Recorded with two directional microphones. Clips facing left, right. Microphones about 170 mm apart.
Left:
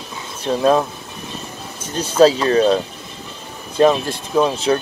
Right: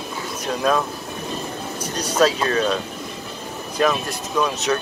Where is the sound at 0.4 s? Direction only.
30° left (ahead or behind).